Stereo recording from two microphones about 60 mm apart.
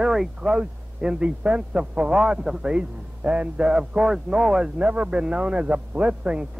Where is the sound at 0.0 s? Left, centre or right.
Centre.